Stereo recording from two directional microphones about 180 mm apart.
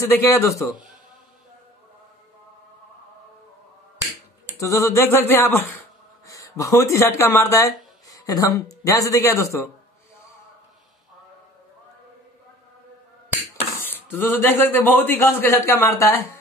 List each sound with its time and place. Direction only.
0.0 s a man's voice: 15° left (ahead or behind)
4.6 s speech: 15° left (ahead or behind)
13.5 s speech: 10° left (ahead or behind)